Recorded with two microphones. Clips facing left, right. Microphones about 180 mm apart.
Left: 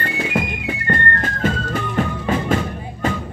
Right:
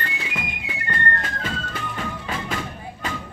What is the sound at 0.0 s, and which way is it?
Music, 50° left (ahead or behind).